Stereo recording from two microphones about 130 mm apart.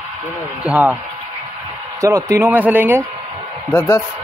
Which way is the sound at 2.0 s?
25° right (ahead or behind).